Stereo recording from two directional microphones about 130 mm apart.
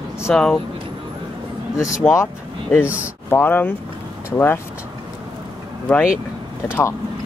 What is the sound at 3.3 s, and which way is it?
Speech, 15° left (ahead or behind).